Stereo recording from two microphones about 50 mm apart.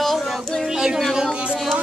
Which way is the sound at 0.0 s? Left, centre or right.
Centre.